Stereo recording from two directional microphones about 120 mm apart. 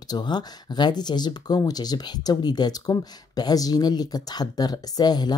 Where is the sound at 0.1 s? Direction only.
35° left (ahead or behind).